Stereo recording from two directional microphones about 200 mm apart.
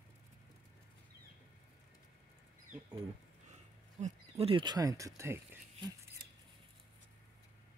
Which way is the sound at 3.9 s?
35° right (ahead or behind).